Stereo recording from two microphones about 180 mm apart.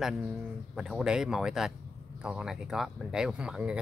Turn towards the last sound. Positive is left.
turn(degrees=-5)  # may be behind; listen again after turning